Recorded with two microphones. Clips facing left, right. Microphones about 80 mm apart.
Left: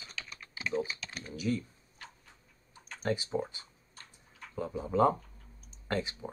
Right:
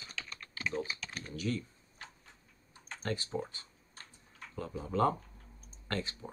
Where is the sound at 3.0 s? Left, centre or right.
Centre.